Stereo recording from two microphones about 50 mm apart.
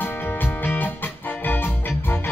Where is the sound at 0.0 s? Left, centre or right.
Left.